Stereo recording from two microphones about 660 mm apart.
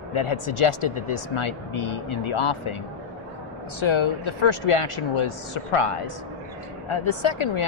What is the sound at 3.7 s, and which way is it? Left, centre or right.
A man's voice, left.